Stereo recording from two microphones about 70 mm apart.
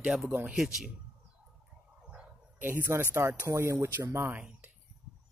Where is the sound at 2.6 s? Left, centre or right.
Right.